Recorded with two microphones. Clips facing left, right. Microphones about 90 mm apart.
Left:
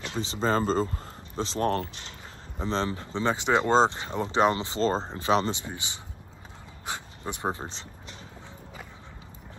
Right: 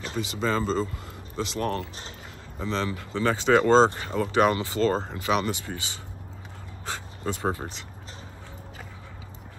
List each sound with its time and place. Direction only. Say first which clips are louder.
0.1 s speech: left 1 dB; 30° left (ahead or behind)